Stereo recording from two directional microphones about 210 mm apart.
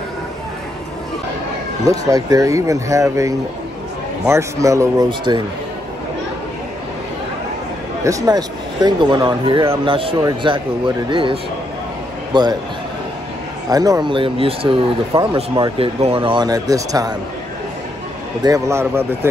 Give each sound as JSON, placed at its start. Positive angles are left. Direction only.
{"t": 1.9, "sound": "speech", "side_deg": -15}
{"t": 8.0, "sound": "a man's voice", "side_deg": -15}
{"t": 13.7, "sound": "speech", "side_deg": -15}
{"t": 18.4, "sound": "speech", "side_deg": -15}